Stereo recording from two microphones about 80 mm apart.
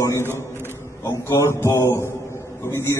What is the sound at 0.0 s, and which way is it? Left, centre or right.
A man's voice, left.